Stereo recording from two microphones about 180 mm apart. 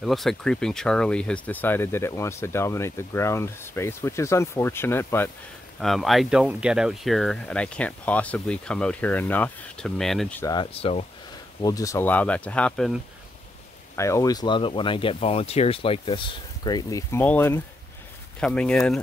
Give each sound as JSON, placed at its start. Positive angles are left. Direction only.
{"t": 0.0, "sound": "speech", "side_deg": 0}
{"t": 5.8, "sound": "speech", "side_deg": 0}
{"t": 10.4, "sound": "speech", "side_deg": 25}
{"t": 11.6, "sound": "speech", "side_deg": 20}
{"t": 13.9, "sound": "speech", "side_deg": 15}